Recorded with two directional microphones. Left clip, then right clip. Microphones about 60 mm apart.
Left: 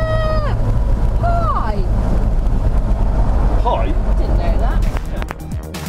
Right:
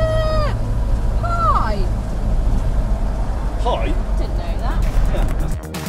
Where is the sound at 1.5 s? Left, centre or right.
Left.